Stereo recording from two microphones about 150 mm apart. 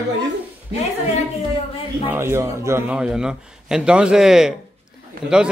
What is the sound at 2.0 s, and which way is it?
Speech, 15° right (ahead or behind).